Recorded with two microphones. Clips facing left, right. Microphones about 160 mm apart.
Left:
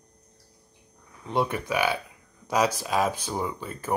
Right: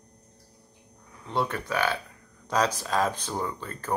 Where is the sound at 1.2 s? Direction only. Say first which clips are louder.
Left 2 dB; 15° left (ahead or behind).